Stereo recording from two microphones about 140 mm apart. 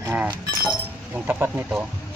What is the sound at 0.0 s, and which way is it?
Shatter, 15° right (ahead or behind).